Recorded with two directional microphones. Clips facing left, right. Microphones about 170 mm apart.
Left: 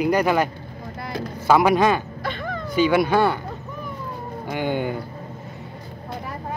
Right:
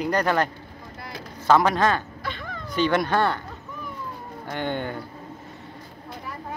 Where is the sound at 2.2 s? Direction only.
60° left (ahead or behind).